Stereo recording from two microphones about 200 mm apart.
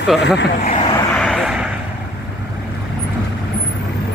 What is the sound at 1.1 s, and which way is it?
Vehicle, centre (ahead or behind).